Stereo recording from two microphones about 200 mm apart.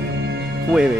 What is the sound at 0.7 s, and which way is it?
Speech, 5° right (ahead or behind).